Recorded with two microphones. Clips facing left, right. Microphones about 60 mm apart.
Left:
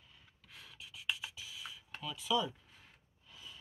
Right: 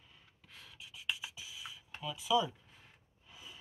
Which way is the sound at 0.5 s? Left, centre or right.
Centre.